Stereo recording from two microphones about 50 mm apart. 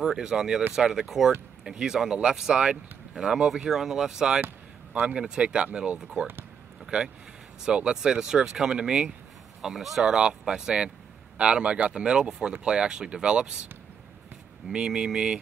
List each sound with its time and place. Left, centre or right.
0.0 s speech: centre
7.6 s speech: centre
9.6 s speech: centre
14.7 s speech: centre